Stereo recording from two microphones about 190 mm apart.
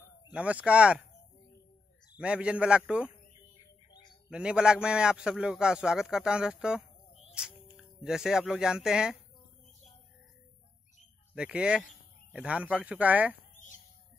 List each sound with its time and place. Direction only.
0.3 s speech: 5° right (ahead or behind)
2.1 s a man's voice: 5° right (ahead or behind)
3.9 s a sound: 20° left (ahead or behind)
4.3 s a man's voice: 5° right (ahead or behind)
11.3 s a man's voice: 5° right (ahead or behind)